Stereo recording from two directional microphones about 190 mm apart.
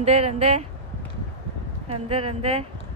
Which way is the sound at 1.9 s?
30° right (ahead or behind).